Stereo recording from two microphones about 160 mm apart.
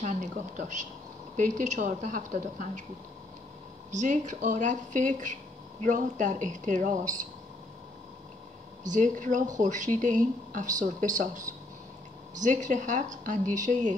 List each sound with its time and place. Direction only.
0.0 s speech: 50° right (ahead or behind)
3.9 s speech: 50° right (ahead or behind)
8.8 s speech: 50° right (ahead or behind)